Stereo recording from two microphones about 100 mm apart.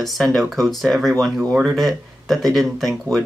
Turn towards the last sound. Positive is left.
turn(degrees=0)  # may be behind; listen again after turning